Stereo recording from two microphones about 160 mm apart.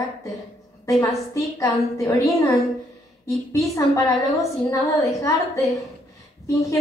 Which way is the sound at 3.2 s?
20° left (ahead or behind).